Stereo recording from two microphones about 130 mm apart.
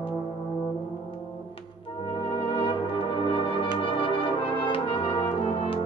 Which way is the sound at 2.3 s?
45° left (ahead or behind).